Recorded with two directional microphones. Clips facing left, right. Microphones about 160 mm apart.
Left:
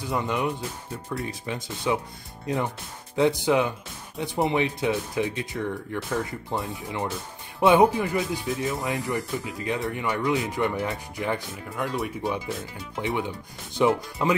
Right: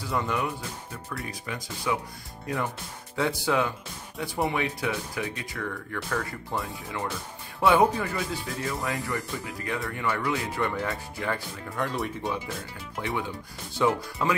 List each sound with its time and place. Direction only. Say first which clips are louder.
0.0 s speech: left 2 dB; 20° left (ahead or behind)
11.7 s speech: left 1 dB; 5° left (ahead or behind)
13.0 s speech: left 3 dB; 20° left (ahead or behind)